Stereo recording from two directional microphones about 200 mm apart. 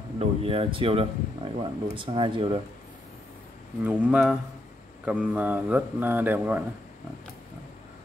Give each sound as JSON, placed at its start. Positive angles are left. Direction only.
{"t": 0.2, "sound": "speech", "side_deg": -30}
{"t": 3.8, "sound": "speech", "side_deg": -5}